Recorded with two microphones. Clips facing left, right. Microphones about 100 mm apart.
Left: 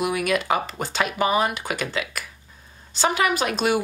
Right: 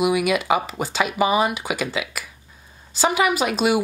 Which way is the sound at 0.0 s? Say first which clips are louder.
Right 3 dB; 5° right (ahead or behind).